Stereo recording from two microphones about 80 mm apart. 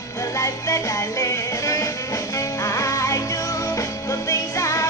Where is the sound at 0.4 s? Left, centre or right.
Left.